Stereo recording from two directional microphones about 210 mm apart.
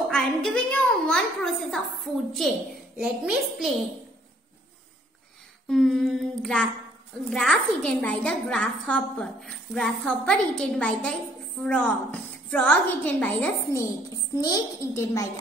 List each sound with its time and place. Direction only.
0.1 s a woman's voice: 5° left (ahead or behind)
3.0 s a woman's voice: centre (ahead or behind)
5.7 s a woman's voice: centre (ahead or behind)